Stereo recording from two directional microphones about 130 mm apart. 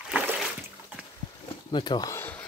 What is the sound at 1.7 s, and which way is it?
Speech, 35° left (ahead or behind).